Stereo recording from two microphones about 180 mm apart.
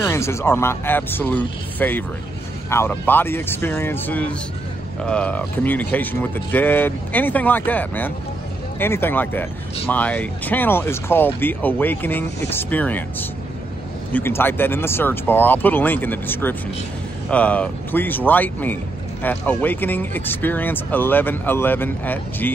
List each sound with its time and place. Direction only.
0.0 s speech: 15° left (ahead or behind)